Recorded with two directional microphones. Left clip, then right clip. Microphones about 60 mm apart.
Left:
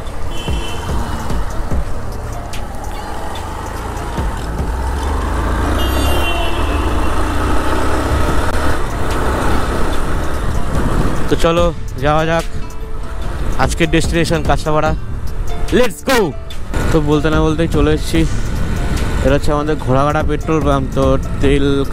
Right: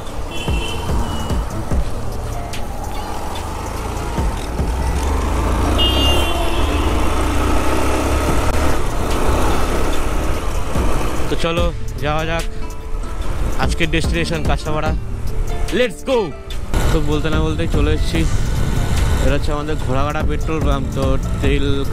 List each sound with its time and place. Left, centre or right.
5.0 s vehicle: right
6.2 s vehicle: right
11.2 s speech: left
13.6 s speech: left
16.9 s speech: left
19.2 s speech: left